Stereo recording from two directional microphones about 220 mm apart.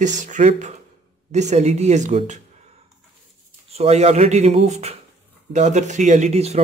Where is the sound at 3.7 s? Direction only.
30° right (ahead or behind).